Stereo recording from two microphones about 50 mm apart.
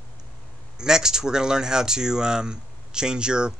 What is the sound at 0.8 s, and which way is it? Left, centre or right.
Speech, centre.